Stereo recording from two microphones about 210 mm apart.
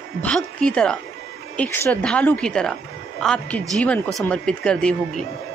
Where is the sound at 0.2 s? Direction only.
5° left (ahead or behind).